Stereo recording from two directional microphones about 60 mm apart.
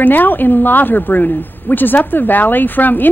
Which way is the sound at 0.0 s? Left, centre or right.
Left.